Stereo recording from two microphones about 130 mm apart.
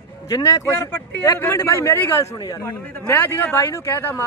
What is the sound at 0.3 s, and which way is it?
Speech, 25° left (ahead or behind).